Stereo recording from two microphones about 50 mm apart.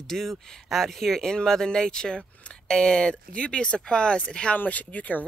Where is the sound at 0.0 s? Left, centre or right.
Centre.